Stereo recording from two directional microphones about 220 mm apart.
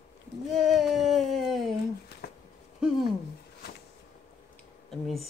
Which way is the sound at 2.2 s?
45° left (ahead or behind).